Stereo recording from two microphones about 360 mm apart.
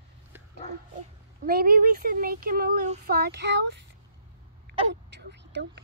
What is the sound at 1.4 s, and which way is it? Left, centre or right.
Speech, right.